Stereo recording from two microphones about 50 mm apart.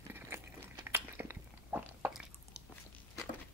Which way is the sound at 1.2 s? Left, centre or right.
Right.